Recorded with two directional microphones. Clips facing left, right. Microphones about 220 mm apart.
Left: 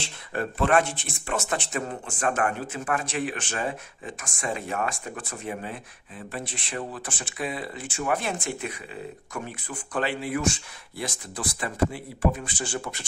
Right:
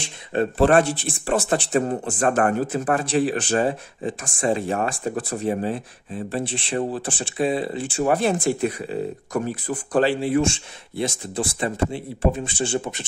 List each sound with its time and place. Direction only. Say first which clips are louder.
0.0 s speech: right 7 dB; 25° right (ahead or behind)